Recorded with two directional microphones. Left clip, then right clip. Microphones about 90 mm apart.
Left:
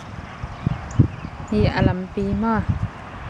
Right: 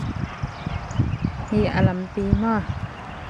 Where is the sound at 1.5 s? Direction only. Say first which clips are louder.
Left 2 dB; centre (ahead or behind).